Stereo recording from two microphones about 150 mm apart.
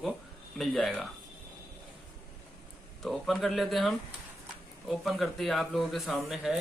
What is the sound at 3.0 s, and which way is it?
A man's voice, centre (ahead or behind).